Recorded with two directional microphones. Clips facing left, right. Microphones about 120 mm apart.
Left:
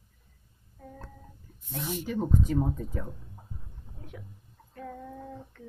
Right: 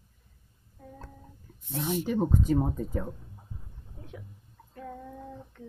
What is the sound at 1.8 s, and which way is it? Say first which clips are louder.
Speech: right 4 dB; 30° right (ahead or behind).